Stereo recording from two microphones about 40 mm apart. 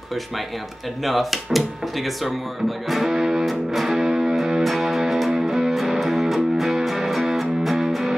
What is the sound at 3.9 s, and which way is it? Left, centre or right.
Music, centre.